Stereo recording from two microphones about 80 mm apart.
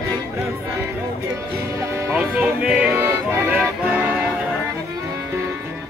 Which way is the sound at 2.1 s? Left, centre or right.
Centre.